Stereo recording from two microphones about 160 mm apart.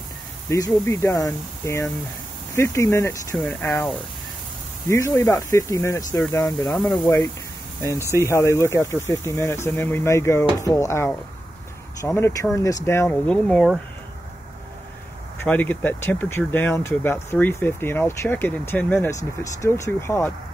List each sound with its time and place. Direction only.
0.5 s speech: 15° left (ahead or behind)
4.8 s speech: 20° left (ahead or behind)
6.8 s speech: 5° left (ahead or behind)
8.1 s speech: 20° left (ahead or behind)
15.4 s speech: 10° left (ahead or behind)